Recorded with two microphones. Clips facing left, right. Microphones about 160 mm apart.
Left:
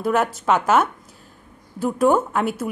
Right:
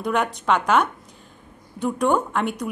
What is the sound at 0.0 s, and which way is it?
A woman's voice, 5° left (ahead or behind).